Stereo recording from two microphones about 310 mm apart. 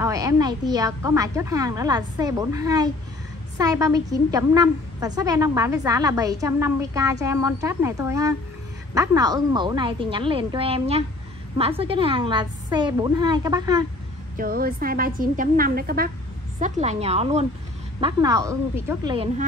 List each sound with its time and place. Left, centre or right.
0.0 s a woman's voice: centre
14.3 s a woman's voice: right